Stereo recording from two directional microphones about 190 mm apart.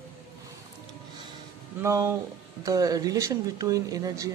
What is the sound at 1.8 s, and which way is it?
Speech, 15° right (ahead or behind).